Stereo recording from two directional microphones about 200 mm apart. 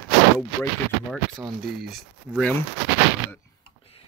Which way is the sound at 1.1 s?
Centre (ahead or behind).